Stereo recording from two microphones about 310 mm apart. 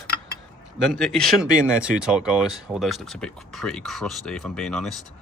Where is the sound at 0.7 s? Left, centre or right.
Centre.